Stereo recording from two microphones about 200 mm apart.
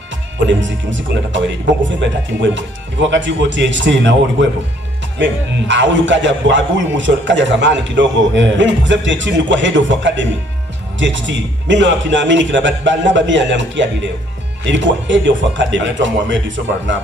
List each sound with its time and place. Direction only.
0.5 s a man's voice: 65° right (ahead or behind)